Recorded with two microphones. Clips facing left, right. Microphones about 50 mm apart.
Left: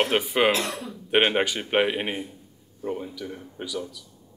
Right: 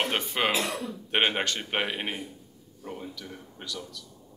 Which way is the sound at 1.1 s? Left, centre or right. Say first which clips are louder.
Left 5 dB; centre.